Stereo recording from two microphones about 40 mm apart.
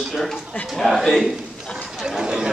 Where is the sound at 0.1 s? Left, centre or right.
Centre.